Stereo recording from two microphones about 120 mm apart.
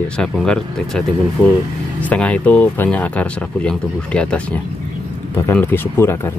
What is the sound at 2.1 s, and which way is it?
Speech, 10° left (ahead or behind).